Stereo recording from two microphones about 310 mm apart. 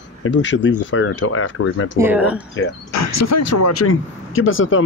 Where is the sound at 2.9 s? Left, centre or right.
Left.